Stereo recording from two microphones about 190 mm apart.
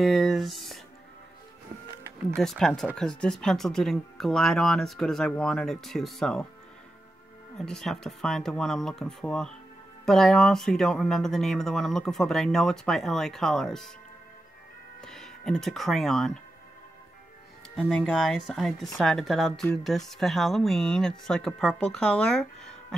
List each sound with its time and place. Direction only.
0.0 s a sound: centre (ahead or behind)
2.4 s a woman's voice: 5° left (ahead or behind)
7.5 s a woman's voice: 5° left (ahead or behind)
15.0 s speech: centre (ahead or behind)
17.7 s a woman's voice: 5° left (ahead or behind)